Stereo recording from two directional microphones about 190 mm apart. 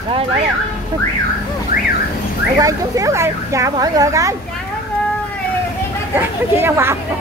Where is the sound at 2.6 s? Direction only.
15° right (ahead or behind).